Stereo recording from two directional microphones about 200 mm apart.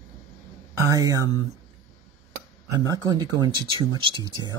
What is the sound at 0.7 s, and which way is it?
Speech, 15° right (ahead or behind).